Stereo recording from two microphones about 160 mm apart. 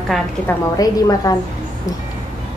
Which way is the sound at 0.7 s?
25° left (ahead or behind).